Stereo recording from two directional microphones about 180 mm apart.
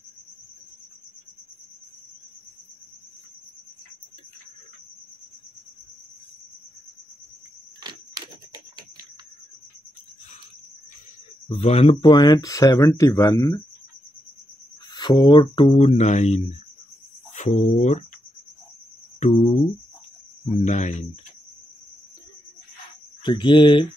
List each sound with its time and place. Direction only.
11.4 s speech: 35° left (ahead or behind)
15.0 s speech: 25° left (ahead or behind); by 18.0 s 40° left (ahead or behind)
19.1 s speech: 40° left (ahead or behind)
20.6 s speech: 40° left (ahead or behind)
23.2 s speech: 25° left (ahead or behind)